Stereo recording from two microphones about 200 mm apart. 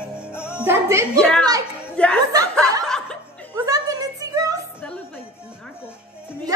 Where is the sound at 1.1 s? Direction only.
5° left (ahead or behind).